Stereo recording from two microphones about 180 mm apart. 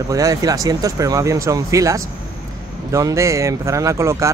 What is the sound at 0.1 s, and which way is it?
Speech, 20° right (ahead or behind).